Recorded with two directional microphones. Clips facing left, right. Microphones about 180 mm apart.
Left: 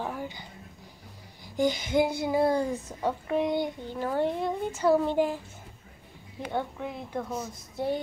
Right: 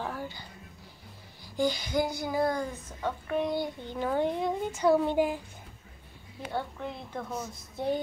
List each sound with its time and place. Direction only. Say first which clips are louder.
0.0 s a sound: left 2 dB; 15° left (ahead or behind)
1.4 s speech: left 2 dB; 20° left (ahead or behind)
3.8 s speech: left 1 dB; 5° left (ahead or behind)
6.5 s speech: left 2 dB; 10° left (ahead or behind)